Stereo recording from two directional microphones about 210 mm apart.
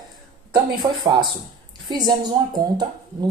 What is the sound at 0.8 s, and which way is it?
Speech, 20° right (ahead or behind).